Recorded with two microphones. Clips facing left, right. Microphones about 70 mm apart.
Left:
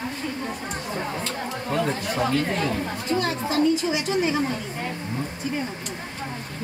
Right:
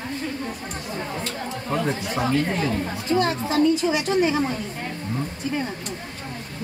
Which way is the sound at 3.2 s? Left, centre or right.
Right.